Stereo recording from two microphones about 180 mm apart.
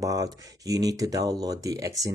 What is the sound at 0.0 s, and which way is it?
Speech, 20° right (ahead or behind).